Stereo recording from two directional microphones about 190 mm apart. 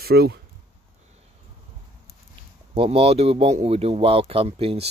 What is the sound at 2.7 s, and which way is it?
A man's voice, 30° right (ahead or behind).